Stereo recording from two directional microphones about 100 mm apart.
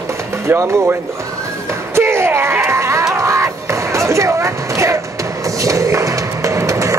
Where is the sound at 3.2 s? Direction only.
30° right (ahead or behind).